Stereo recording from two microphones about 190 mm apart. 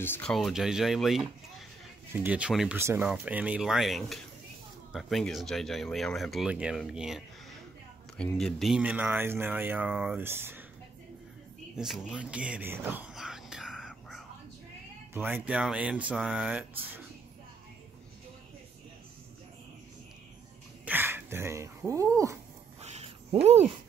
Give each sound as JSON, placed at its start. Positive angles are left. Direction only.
{"t": 0.0, "sound": "speech", "side_deg": 10}
{"t": 11.7, "sound": "whispering", "side_deg": 0}
{"t": 15.1, "sound": "speech", "side_deg": -10}
{"t": 20.8, "sound": "speech", "side_deg": -10}
{"t": 22.8, "sound": "a sound", "side_deg": -35}